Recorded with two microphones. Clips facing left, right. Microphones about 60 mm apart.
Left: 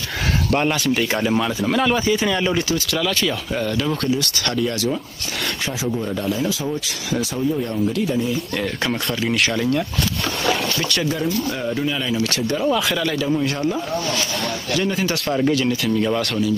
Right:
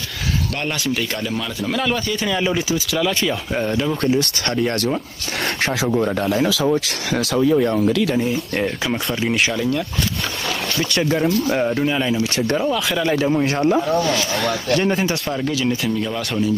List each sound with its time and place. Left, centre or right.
1.6 s speech: centre
3.5 s speech: right
4.1 s speech: right
5.9 s speech: right
9.3 s speech: centre
12.1 s speech: centre
12.6 s speech: centre
15.2 s speech: centre